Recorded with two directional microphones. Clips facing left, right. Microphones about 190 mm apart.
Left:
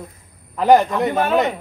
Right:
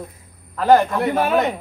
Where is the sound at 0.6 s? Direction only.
15° left (ahead or behind).